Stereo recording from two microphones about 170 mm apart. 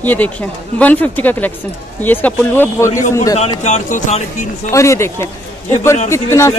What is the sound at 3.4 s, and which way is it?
Speech, 40° left (ahead or behind).